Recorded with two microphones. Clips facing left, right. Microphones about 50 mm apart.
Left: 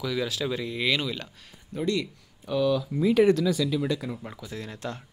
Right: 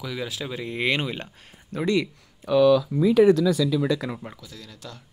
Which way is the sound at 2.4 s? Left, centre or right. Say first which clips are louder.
Right 7 dB; right.